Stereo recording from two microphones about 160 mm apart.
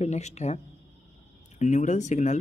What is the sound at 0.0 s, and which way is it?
Speech, 45° left (ahead or behind).